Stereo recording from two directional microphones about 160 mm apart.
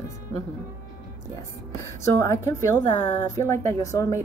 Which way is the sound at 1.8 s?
20° left (ahead or behind).